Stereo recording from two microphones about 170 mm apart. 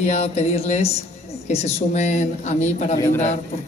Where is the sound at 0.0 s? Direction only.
40° left (ahead or behind).